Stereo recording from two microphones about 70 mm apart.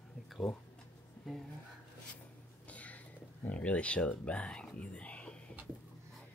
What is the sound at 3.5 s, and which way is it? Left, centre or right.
Speech, centre.